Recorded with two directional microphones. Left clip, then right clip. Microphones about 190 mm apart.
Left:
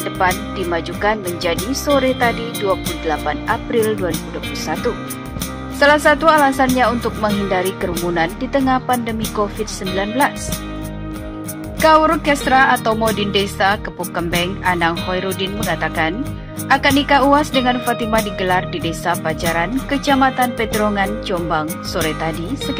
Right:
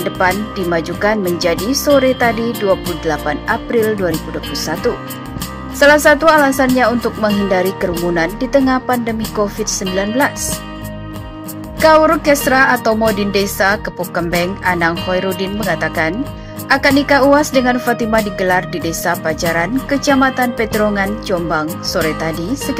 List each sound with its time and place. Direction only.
0.2 s speech: 20° right (ahead or behind)
11.8 s speech: 20° right (ahead or behind)